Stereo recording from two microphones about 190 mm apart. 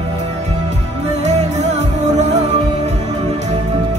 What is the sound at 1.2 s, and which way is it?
Music, 35° right (ahead or behind).